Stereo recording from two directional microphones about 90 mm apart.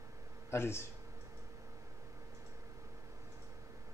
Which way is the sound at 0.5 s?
30° left (ahead or behind).